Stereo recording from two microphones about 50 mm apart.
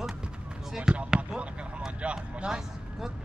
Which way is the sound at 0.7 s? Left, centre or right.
Centre.